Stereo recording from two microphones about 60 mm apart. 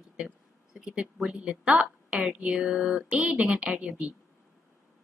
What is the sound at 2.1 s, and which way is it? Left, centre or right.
A woman's voice, centre.